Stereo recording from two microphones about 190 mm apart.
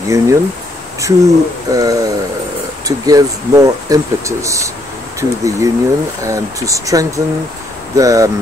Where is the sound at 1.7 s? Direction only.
20° right (ahead or behind).